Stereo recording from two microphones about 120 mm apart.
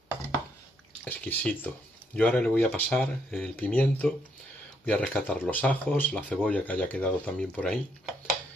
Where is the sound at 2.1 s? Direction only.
10° left (ahead or behind).